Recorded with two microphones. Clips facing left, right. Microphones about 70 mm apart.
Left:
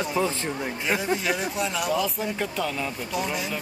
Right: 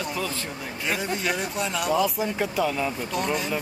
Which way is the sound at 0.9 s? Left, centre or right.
Centre.